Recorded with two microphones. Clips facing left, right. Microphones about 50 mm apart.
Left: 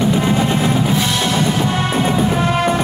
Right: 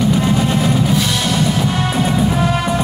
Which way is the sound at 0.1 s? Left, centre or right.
Centre.